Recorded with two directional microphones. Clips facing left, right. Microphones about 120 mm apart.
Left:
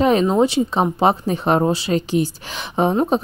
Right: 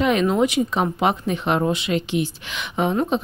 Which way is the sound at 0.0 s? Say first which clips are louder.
Left 3 dB; 35° left (ahead or behind).